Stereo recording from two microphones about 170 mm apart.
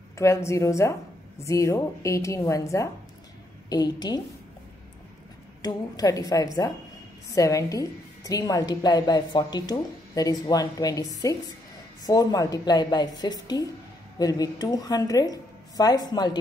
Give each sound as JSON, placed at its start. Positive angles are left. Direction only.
{"t": 0.2, "sound": "a woman's voice", "side_deg": 15}
{"t": 5.6, "sound": "a woman's voice", "side_deg": 20}